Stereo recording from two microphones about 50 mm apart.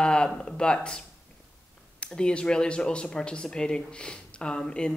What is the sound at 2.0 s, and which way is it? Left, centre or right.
Speech, left.